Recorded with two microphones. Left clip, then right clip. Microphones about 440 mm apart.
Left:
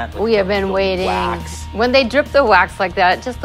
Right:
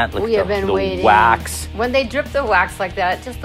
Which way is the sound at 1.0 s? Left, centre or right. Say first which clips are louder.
Right 7 dB; right.